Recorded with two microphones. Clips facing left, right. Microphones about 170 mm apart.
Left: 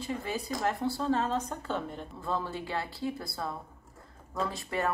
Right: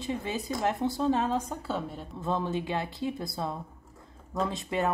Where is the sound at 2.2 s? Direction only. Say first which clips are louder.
Right 4 dB; 20° right (ahead or behind).